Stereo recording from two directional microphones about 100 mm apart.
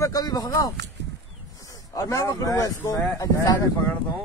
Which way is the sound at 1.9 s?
35° left (ahead or behind).